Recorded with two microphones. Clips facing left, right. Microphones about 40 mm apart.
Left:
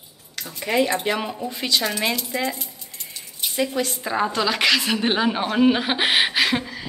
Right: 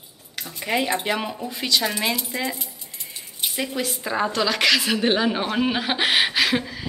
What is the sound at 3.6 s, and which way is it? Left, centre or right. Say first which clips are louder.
A woman's voice: left 5 dB; centre.